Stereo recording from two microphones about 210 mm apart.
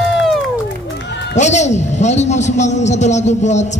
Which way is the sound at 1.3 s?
35° left (ahead or behind).